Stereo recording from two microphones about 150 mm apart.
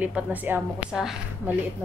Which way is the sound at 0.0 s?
10° right (ahead or behind).